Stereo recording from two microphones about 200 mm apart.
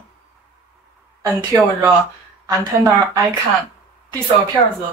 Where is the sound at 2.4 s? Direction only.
20° right (ahead or behind).